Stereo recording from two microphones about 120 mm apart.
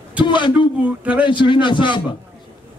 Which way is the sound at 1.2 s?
40° left (ahead or behind).